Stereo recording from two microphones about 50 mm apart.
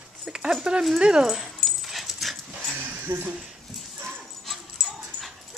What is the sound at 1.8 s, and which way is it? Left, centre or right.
Dog, centre.